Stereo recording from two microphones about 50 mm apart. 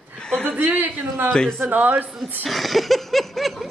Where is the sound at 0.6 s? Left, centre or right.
Right.